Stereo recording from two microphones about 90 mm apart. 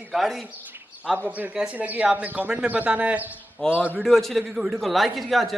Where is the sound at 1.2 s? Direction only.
20° right (ahead or behind).